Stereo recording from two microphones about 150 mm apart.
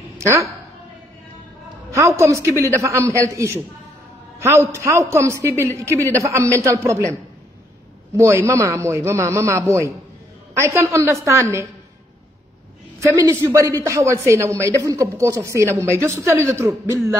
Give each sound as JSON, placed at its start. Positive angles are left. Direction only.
{"t": 0.2, "sound": "a woman's voice", "side_deg": -20}
{"t": 1.9, "sound": "a woman's voice", "side_deg": -20}
{"t": 8.2, "sound": "a woman's voice", "side_deg": -20}
{"t": 13.0, "sound": "a woman's voice", "side_deg": -20}